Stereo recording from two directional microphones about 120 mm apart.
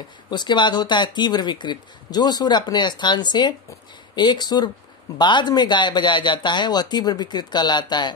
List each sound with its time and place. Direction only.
0.3 s speech: 40° left (ahead or behind)